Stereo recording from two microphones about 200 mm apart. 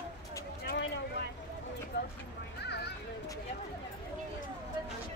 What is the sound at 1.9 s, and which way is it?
Speech, 60° left (ahead or behind).